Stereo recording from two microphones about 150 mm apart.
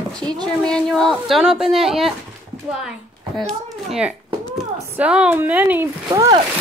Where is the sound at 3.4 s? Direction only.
Centre (ahead or behind).